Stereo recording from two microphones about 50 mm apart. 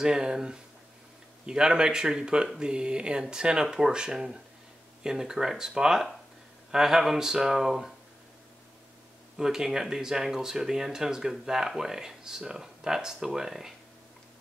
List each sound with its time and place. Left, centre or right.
0.0 s speech: centre
9.4 s speech: centre